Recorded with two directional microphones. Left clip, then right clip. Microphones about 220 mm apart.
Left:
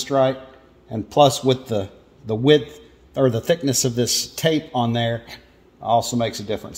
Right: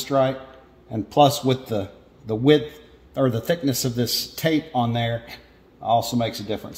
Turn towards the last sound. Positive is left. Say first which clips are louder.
# left 2 dB
turn(degrees=30)  # may be behind; listen again after turning